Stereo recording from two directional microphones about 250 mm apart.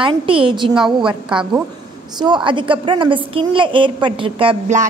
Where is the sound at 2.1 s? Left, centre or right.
Centre.